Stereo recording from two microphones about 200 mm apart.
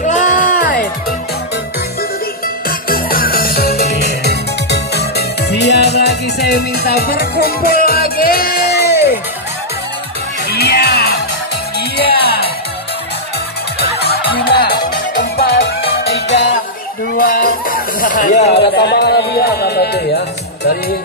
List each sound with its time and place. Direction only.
0.0 s music: 40° left (ahead or behind)
2.9 s music: 50° left (ahead or behind)
10.5 s music: 55° left (ahead or behind)
13.7 s music: 55° left (ahead or behind)
17.1 s music: 45° left (ahead or behind)
18.5 s speech: 55° left (ahead or behind)